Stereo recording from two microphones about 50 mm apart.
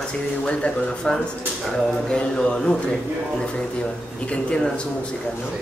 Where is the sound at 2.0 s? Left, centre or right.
Centre.